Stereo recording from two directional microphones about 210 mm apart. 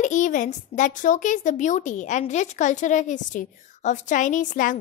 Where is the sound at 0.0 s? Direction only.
35° left (ahead or behind).